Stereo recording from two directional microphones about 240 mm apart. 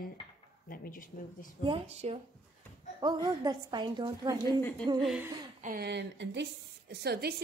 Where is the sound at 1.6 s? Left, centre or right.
Right.